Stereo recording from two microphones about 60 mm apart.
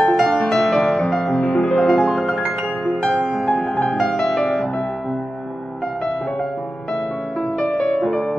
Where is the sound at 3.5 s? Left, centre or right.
Centre.